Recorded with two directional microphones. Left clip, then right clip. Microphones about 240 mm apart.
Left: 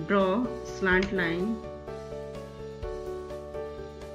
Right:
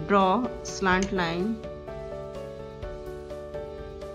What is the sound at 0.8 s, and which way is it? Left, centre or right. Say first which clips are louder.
Speech: right 1 dB; right.